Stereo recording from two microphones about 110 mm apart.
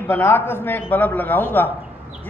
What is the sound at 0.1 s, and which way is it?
A man's voice, 20° left (ahead or behind).